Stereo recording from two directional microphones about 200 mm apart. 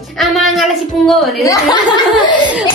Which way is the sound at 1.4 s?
15° left (ahead or behind).